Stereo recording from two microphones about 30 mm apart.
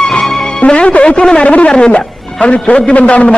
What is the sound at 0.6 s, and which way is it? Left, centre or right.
Music, left.